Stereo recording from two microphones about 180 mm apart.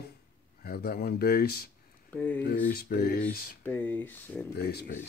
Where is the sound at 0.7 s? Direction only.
55° left (ahead or behind).